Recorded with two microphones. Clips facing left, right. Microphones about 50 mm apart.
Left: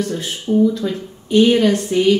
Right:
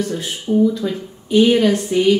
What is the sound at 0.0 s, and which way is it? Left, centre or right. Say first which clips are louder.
A woman's voice: even; centre.